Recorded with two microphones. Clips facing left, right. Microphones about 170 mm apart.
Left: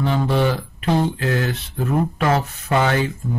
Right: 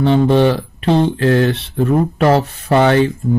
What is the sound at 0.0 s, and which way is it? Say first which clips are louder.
Speech: right 8 dB; 25° right (ahead or behind).